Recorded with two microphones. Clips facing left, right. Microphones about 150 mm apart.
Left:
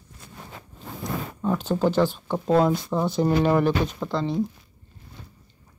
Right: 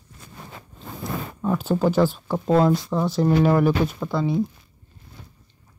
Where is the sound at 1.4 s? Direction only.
5° right (ahead or behind).